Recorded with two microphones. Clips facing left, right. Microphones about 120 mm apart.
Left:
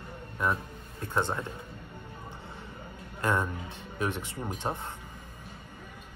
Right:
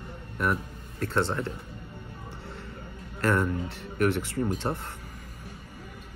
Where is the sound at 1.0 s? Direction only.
15° left (ahead or behind).